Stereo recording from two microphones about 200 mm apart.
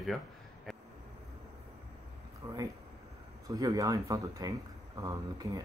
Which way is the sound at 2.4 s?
20° right (ahead or behind).